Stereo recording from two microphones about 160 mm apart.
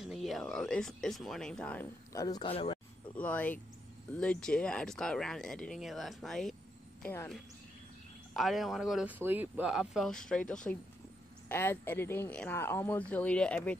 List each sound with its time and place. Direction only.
0.0 s speech: centre (ahead or behind)
2.2 s speech: 25° left (ahead or behind)
3.2 s speech: 10° left (ahead or behind)
8.3 s speech: centre (ahead or behind)